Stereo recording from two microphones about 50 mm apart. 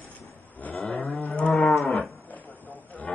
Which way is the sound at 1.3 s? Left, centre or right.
Centre.